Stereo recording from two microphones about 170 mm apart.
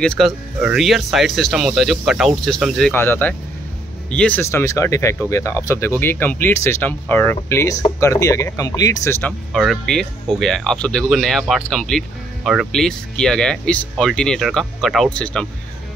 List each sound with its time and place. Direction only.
0.0 s speech: 5° left (ahead or behind)
9.5 s speech: centre (ahead or behind)